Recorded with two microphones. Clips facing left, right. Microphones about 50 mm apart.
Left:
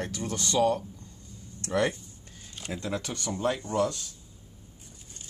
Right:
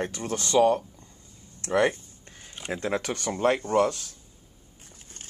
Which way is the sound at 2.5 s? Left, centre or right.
Right.